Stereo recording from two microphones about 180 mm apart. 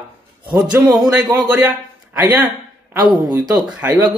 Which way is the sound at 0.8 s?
20° right (ahead or behind).